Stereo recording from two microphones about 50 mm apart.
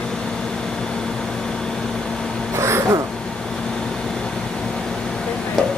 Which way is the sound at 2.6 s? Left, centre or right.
Right.